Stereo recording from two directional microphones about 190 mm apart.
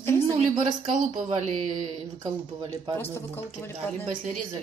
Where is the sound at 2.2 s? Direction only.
20° right (ahead or behind).